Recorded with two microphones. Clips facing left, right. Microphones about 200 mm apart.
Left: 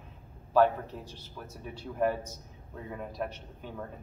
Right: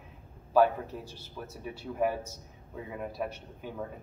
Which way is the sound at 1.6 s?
10° right (ahead or behind).